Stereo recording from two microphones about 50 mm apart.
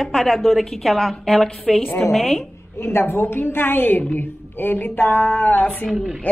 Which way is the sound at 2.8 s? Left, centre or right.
Left.